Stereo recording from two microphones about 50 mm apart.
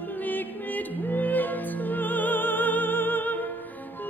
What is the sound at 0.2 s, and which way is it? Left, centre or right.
Music, left.